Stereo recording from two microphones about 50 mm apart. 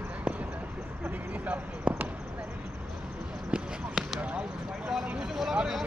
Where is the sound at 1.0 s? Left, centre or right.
Right.